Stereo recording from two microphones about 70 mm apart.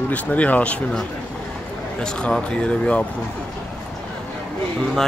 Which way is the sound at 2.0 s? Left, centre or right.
Centre.